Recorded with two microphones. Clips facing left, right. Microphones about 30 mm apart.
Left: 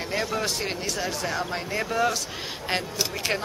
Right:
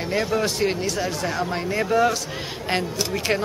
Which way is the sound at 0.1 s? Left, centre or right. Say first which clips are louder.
Right 5 dB; centre.